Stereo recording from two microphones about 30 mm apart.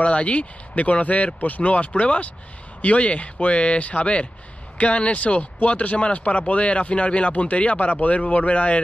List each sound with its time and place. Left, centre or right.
0.0 s speech: left
6.1 s speech: left
7.9 s speech: left